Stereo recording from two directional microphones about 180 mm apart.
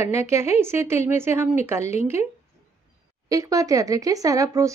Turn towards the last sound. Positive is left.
turn(degrees=-20)  # may be behind; listen again after turning